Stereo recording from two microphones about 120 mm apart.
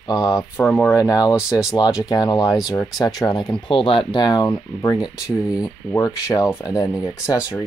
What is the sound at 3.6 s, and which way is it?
Speech, 45° left (ahead or behind).